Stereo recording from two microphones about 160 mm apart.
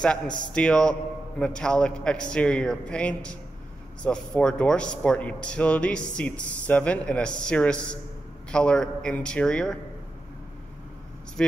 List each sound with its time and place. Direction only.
0.5 s a man's voice: 5° left (ahead or behind)